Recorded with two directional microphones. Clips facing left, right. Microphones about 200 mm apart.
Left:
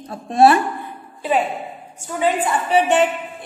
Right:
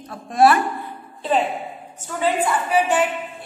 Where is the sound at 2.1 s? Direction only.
15° left (ahead or behind).